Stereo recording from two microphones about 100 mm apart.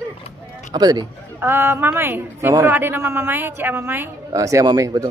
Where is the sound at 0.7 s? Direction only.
45° right (ahead or behind).